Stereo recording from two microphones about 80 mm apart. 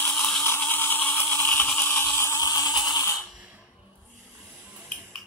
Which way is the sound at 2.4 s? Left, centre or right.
Left.